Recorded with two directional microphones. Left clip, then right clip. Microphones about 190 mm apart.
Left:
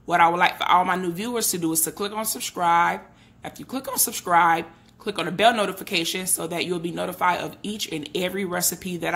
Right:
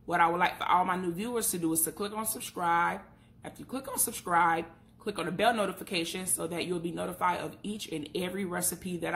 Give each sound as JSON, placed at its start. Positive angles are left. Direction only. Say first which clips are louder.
{"t": 0.1, "sound": "speech", "louder": "left 8 dB", "side_deg": 25}